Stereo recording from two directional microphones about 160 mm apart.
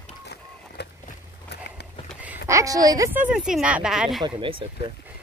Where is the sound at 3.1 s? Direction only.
10° right (ahead or behind).